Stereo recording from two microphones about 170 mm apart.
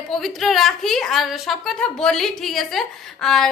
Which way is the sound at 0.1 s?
Centre (ahead or behind).